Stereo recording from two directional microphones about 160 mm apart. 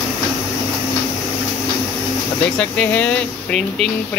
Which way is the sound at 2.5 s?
10° left (ahead or behind).